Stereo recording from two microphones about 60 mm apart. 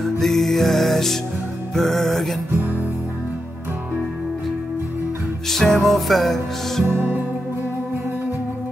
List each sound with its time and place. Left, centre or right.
0.0 s music: centre
5.5 s music: centre
6.9 s music: right